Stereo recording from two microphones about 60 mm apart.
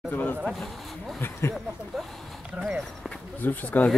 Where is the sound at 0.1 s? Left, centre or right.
Left.